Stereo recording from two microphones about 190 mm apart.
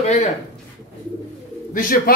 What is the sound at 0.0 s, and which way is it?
Speech, 35° left (ahead or behind).